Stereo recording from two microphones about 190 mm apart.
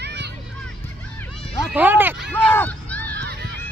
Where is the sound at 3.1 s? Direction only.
60° right (ahead or behind).